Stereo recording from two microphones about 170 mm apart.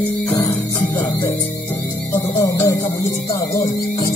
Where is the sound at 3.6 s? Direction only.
50° left (ahead or behind).